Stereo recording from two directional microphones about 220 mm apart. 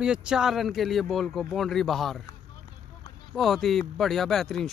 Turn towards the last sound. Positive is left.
turn(degrees=0)  # may be behind; listen again after turning